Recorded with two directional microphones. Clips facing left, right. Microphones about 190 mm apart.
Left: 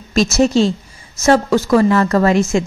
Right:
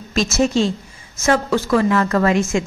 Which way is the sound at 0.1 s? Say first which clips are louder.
Left 4 dB; 35° left (ahead or behind).